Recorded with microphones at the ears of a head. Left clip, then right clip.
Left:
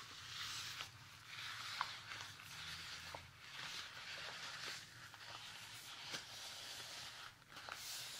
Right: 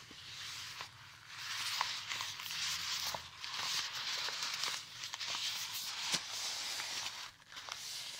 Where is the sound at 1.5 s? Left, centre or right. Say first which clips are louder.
Right 9 dB; right.